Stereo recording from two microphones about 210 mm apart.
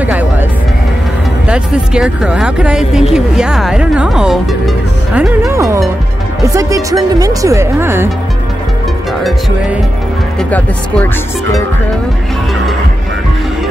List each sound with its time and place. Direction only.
0.0 s music: 10° right (ahead or behind)
1.5 s speech: 5° right (ahead or behind)
5.5 s speech: 15° right (ahead or behind)